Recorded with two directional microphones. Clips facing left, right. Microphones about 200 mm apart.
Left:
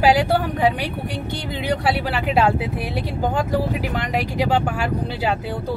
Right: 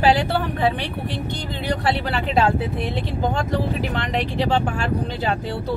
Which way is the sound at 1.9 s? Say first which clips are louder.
Left 1 dB; 10° left (ahead or behind).